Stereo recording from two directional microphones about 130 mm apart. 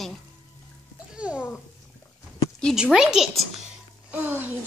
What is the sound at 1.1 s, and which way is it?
Babbling, 10° right (ahead or behind).